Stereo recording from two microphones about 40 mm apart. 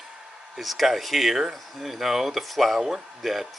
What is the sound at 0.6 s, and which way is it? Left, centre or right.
Speech, centre.